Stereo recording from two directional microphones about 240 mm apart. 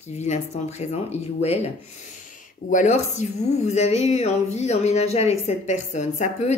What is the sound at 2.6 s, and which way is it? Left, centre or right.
Speech, left.